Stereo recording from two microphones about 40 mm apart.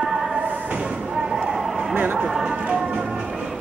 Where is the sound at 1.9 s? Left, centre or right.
Right.